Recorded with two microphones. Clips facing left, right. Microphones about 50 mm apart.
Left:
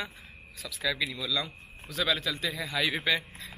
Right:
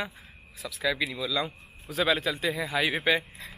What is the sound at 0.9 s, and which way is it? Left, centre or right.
A man's voice, centre.